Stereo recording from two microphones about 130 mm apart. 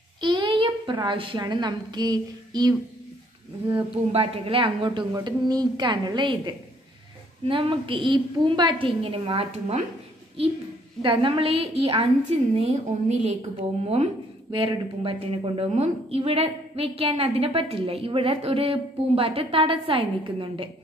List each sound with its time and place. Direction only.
0.2 s a woman's voice: 35° right (ahead or behind)
4.1 s a woman's voice: 45° right (ahead or behind)
5.1 s a woman's voice: 30° right (ahead or behind); by 13.4 s 60° right (ahead or behind)
14.5 s a woman's voice: 45° right (ahead or behind)